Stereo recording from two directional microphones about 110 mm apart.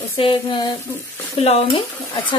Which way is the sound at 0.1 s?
50° left (ahead or behind).